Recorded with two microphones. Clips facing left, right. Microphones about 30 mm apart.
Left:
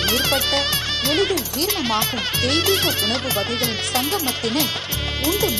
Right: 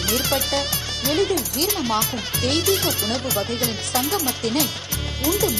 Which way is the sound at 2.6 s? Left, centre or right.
Left.